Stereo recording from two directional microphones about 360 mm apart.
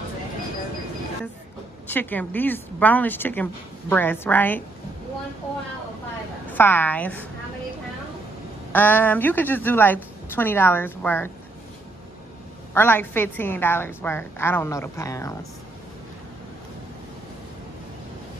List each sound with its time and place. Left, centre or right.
1.9 s a woman's voice: centre
6.5 s a woman's voice: centre
8.7 s a woman's voice: centre
12.7 s a woman's voice: centre